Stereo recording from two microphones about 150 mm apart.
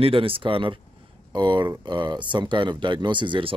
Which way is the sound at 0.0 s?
35° right (ahead or behind).